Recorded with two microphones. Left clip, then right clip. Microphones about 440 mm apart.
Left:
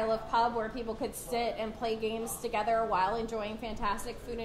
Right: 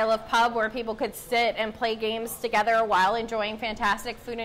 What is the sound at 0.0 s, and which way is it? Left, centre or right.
A woman's voice, right.